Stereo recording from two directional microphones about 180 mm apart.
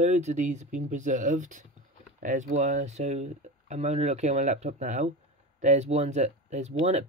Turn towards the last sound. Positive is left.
turn(degrees=-40)  # may be behind; listen again after turning